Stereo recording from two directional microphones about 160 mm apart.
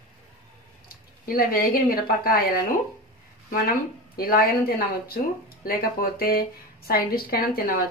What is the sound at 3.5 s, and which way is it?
Speech, 70° left (ahead or behind).